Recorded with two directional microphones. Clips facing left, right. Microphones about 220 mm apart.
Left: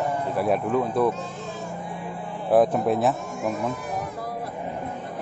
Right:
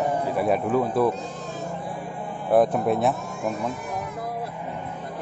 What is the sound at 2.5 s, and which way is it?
Speech, centre (ahead or behind).